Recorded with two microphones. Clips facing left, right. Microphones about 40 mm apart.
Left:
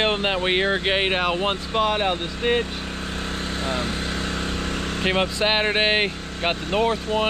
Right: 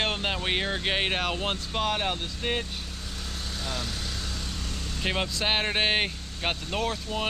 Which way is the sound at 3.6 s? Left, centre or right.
Left.